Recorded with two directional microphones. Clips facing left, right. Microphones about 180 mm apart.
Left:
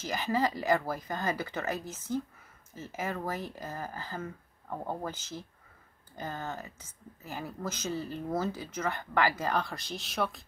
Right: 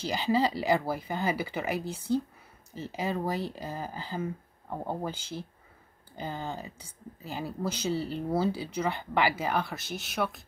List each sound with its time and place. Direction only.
0.0 s speech: 15° right (ahead or behind)